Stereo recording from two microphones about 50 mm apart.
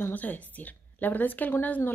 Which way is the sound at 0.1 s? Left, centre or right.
Left.